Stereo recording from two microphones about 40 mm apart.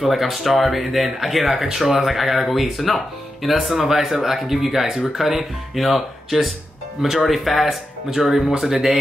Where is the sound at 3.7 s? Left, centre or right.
Centre.